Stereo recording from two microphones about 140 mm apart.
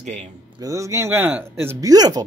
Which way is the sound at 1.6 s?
25° right (ahead or behind).